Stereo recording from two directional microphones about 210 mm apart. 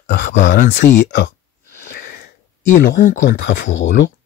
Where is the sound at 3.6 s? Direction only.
65° left (ahead or behind).